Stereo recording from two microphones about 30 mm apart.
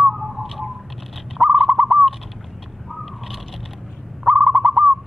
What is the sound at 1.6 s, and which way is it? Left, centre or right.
Bird, right.